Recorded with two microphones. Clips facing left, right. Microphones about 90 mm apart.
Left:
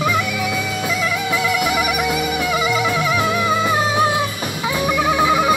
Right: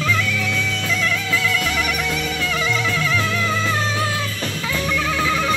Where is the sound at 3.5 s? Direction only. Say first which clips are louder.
Left 4 dB; 15° left (ahead or behind).